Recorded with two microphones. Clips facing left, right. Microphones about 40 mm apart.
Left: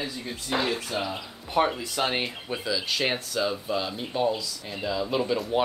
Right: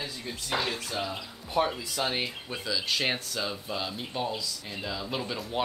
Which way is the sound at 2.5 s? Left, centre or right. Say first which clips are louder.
Left 2 dB; centre.